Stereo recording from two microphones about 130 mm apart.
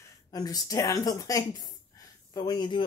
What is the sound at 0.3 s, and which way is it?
Speech, 30° left (ahead or behind).